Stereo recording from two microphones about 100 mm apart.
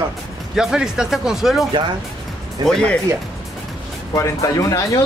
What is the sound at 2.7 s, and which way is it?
Speech, 10° left (ahead or behind).